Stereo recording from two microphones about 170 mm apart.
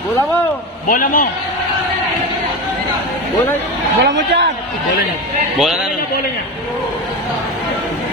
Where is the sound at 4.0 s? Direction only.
90° right.